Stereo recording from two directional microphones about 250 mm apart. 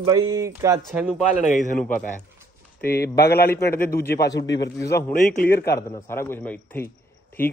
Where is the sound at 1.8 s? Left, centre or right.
Left.